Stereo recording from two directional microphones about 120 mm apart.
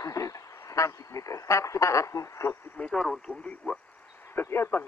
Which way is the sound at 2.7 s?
10° left (ahead or behind).